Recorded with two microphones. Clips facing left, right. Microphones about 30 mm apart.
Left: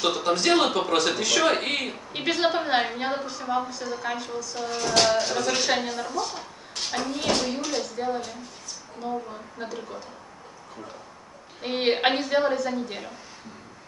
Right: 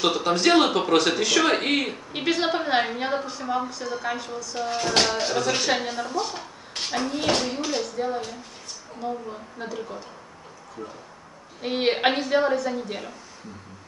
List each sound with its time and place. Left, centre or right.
0.0 s speech: centre
4.6 s speech: centre
11.6 s speech: centre